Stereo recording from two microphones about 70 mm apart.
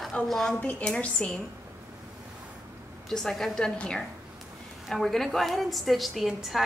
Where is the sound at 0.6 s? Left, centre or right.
Centre.